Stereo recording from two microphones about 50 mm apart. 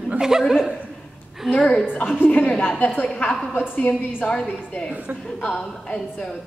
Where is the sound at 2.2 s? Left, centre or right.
Left.